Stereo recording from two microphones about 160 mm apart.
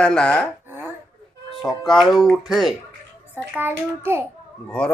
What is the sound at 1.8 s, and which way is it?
Speech, centre (ahead or behind).